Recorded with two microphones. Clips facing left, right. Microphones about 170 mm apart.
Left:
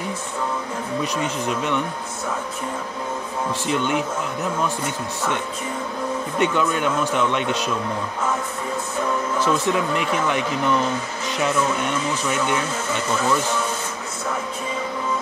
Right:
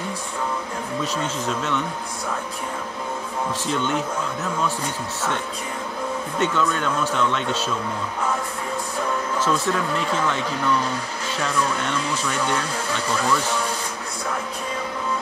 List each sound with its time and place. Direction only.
1.0 s speech: 15° left (ahead or behind)
3.6 s speech: 15° left (ahead or behind)
6.4 s speech: 15° left (ahead or behind)
9.4 s speech: 15° left (ahead or behind)
11.2 s a sound: 15° left (ahead or behind)
11.5 s speech: 5° left (ahead or behind)